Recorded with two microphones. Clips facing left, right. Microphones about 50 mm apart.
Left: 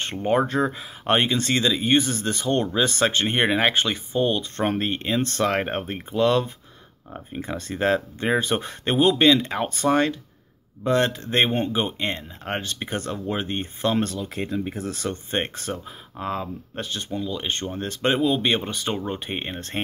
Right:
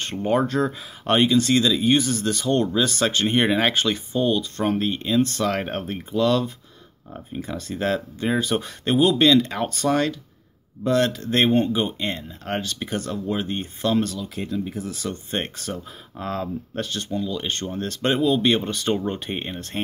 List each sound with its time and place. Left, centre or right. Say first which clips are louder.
0.0 s speech: even; left
7.1 s speech: right 1 dB; centre
7.4 s speech: left 2 dB; left
14.8 s speech: left 1 dB; left
15.0 s speech: left 2 dB; left
16.2 s speech: right 1 dB; centre